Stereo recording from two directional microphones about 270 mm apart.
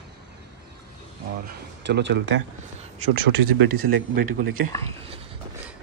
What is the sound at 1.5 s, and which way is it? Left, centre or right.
Speech, right.